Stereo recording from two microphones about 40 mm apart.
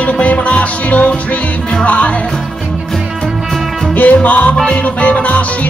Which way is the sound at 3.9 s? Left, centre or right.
Left.